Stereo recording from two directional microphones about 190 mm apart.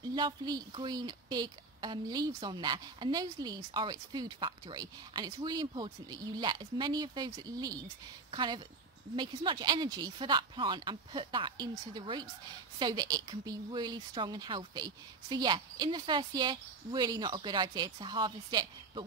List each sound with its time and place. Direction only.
0.0 s a woman's voice: 20° right (ahead or behind)